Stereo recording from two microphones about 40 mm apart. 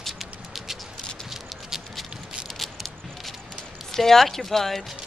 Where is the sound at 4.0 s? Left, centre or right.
Centre.